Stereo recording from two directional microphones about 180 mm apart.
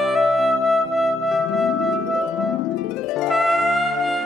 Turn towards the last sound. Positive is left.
turn(degrees=0)  # may be behind; listen again after turning